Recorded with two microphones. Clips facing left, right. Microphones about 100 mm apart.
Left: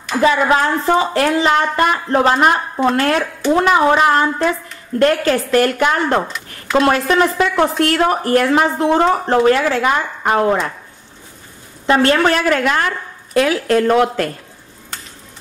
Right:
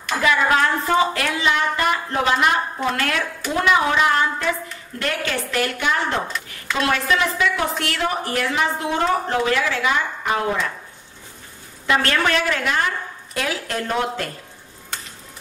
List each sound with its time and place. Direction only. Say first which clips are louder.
0.2 s a woman's voice: left 5 dB; 30° left (ahead or behind); by 6.2 s 50° left (ahead or behind)
6.7 s speech: left 7 dB; 40° left (ahead or behind)
8.7 s speech: left 7 dB; 35° left (ahead or behind)
11.8 s speech: left 7 dB; 30° left (ahead or behind)
12.4 s a woman's voice: left 6 dB; 50° left (ahead or behind); by 14.2 s 75° left (ahead or behind)